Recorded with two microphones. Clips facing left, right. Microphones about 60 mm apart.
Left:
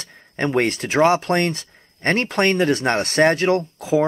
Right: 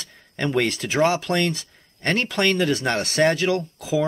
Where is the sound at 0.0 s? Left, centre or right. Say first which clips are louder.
Left 3 dB; left.